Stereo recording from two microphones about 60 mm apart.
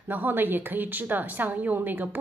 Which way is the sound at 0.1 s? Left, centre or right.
Right.